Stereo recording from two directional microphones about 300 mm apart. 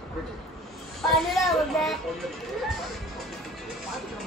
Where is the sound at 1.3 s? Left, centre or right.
Centre.